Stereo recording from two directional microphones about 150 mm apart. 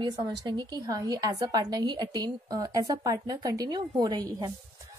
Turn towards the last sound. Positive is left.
turn(degrees=-25)  # may be behind; listen again after turning